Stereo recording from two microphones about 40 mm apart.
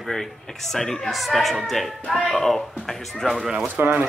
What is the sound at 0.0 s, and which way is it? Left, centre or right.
Speech, centre.